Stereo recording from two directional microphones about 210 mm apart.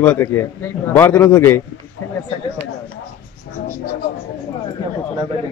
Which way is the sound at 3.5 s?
55° left (ahead or behind).